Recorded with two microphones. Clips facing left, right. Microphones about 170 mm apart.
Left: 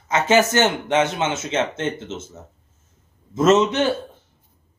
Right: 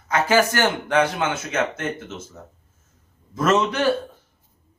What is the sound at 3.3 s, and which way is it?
Speech, 25° left (ahead or behind).